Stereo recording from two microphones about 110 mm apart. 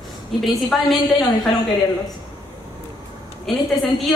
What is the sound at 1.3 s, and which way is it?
Speech, 40° left (ahead or behind).